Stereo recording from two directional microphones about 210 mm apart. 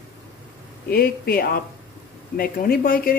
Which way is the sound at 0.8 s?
45° left (ahead or behind).